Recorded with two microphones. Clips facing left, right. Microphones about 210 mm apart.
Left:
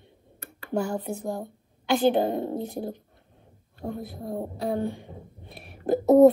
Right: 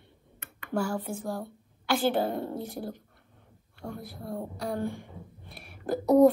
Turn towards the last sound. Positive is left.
turn(degrees=20)  # may be behind; listen again after turning